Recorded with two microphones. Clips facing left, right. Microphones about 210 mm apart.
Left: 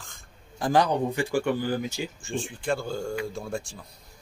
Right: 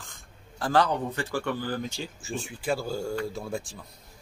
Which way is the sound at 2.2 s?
5° right (ahead or behind).